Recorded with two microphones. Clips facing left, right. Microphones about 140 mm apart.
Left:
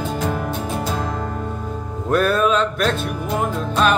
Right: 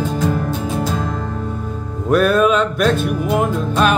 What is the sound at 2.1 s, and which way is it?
Speech, centre (ahead or behind).